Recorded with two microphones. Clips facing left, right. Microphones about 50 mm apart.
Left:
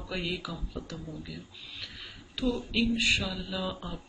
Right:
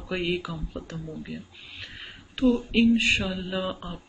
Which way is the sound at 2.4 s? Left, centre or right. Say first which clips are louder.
Right 8 dB; right.